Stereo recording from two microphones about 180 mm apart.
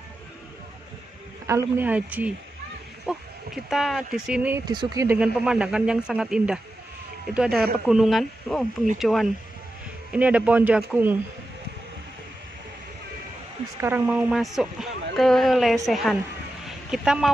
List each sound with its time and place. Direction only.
1.5 s a man's voice: 10° right (ahead or behind)
3.1 s a sound: centre (ahead or behind)
4.3 s a man's voice: 5° right (ahead or behind)
4.6 s speech: 20° right (ahead or behind)
5.2 s a man's voice: 5° right (ahead or behind)
13.7 s speech: 10° right (ahead or behind)
16.6 s a sound: 5° right (ahead or behind)